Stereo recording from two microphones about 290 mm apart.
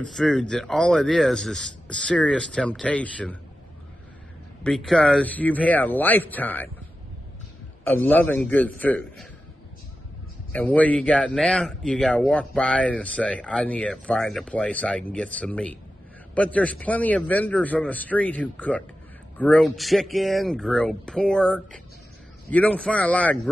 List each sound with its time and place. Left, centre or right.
0.0 s speech: centre
4.6 s speech: centre
7.8 s speech: centre
10.5 s speech: centre